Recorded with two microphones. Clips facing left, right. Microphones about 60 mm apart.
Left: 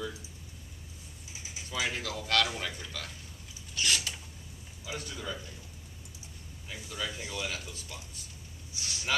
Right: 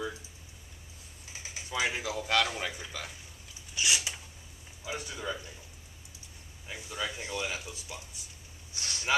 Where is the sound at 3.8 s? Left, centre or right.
Centre.